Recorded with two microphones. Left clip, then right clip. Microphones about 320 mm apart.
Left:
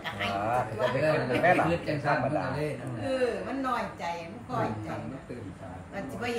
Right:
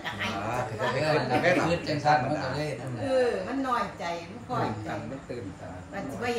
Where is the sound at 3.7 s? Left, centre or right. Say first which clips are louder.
Right 2 dB; centre.